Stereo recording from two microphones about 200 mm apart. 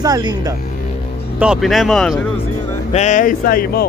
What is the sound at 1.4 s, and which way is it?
Speech, centre (ahead or behind).